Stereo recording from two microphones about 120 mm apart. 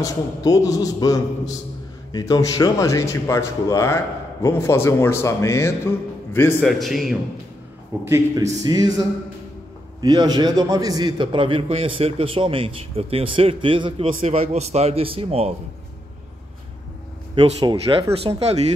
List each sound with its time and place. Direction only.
0.0 s speech: 30° left (ahead or behind)
6.6 s a man's voice: centre (ahead or behind)
8.0 s a man's voice: 20° right (ahead or behind)
8.6 s music: 35° right (ahead or behind)
9.9 s a man's voice: 35° right (ahead or behind)
14.2 s speech: 65° right (ahead or behind)
17.4 s a man's voice: 60° right (ahead or behind)
18.2 s speech: 60° right (ahead or behind)